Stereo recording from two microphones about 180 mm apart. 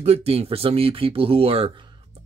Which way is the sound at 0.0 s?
35° right (ahead or behind).